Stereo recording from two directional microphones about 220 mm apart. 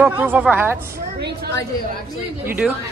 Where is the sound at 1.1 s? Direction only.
50° right (ahead or behind).